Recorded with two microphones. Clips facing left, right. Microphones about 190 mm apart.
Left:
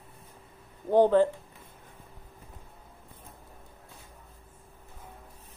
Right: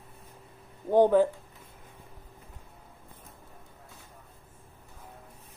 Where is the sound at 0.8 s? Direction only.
10° right (ahead or behind).